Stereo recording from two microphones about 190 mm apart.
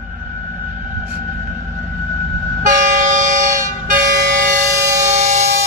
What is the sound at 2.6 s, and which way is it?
Train, 40° right (ahead or behind).